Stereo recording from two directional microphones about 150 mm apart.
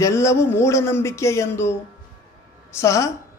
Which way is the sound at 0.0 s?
20° left (ahead or behind).